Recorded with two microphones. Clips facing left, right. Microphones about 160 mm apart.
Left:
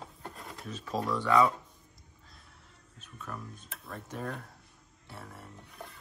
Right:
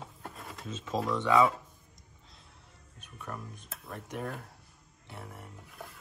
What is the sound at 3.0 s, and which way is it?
Speech, 15° right (ahead or behind).